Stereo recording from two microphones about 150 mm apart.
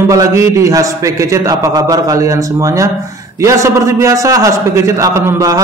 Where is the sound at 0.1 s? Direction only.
20° right (ahead or behind).